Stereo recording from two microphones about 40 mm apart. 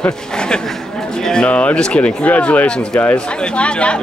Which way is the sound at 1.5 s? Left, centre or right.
Left.